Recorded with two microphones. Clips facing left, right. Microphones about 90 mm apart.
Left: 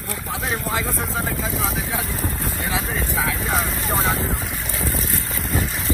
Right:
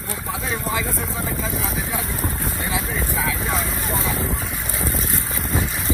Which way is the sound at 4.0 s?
25° left (ahead or behind).